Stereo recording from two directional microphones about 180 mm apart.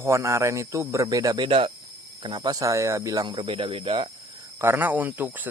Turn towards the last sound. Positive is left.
turn(degrees=-10)  # may be behind; listen again after turning